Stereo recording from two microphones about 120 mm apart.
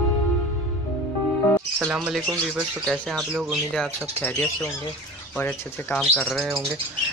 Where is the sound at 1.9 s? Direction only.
5° right (ahead or behind).